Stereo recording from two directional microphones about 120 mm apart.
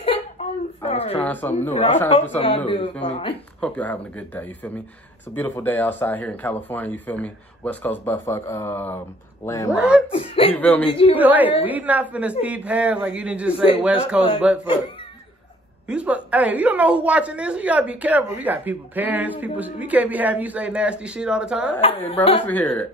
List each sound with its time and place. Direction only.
0.4 s a sound: 60° left (ahead or behind)
1.2 s speech: 15° left (ahead or behind)
2.3 s speech: 50° left (ahead or behind)
3.6 s speech: 10° left (ahead or behind); by 9.8 s 30° left (ahead or behind)
9.8 s a woman's voice: 10° right (ahead or behind)
10.1 s speech: 50° left (ahead or behind)
10.5 s speech: 15° left (ahead or behind)
10.9 s speech: 50° left (ahead or behind)
11.1 s a woman's voice: 15° right (ahead or behind)
15.9 s a woman's voice: 10° right (ahead or behind)
21.8 s speech: 50° left (ahead or behind)
22.5 s speech: 15° left (ahead or behind)